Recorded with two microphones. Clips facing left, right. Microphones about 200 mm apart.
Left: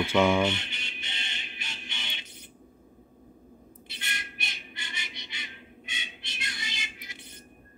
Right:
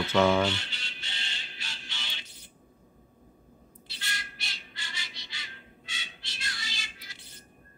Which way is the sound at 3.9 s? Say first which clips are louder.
Even; 20° left (ahead or behind).